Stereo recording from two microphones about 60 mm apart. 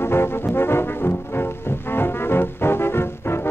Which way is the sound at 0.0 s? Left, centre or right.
Left.